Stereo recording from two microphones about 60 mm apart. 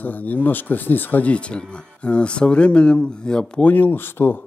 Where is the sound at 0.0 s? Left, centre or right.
Left.